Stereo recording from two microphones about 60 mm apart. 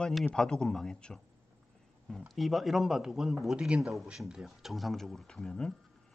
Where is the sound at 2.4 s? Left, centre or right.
Centre.